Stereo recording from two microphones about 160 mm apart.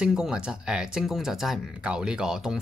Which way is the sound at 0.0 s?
5° right (ahead or behind).